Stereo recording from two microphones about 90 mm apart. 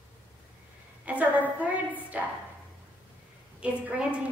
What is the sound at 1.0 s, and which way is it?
A woman's voice, 15° right (ahead or behind).